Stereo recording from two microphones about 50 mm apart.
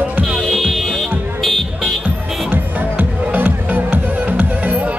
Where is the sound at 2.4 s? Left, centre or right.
Right.